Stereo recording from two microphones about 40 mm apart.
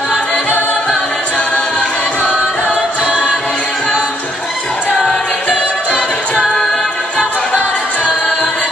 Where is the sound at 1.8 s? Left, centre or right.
Left.